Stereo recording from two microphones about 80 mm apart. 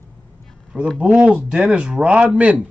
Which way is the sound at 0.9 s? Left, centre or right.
Centre.